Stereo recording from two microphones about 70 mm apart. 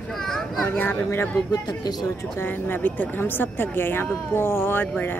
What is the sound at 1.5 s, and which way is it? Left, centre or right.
Speech, left.